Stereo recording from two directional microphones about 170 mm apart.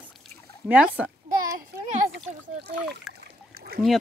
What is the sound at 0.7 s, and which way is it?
Speech, 10° right (ahead or behind).